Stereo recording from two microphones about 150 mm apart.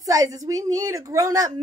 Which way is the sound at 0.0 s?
25° right (ahead or behind).